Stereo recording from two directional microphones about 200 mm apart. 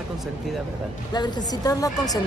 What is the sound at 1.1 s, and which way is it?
A woman's voice, 20° left (ahead or behind).